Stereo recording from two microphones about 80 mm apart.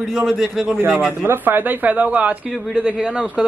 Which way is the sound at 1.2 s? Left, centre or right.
Right.